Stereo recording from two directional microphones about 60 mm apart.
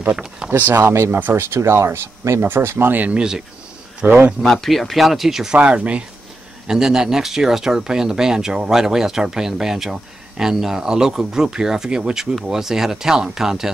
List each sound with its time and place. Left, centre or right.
0.1 s speech: centre
0.5 s speech: right
0.7 s speech: right
2.4 s speech: right
2.9 s speech: right
3.2 s speech: centre
4.0 s speech: right
4.4 s speech: centre
5.6 s speech: centre
6.7 s speech: centre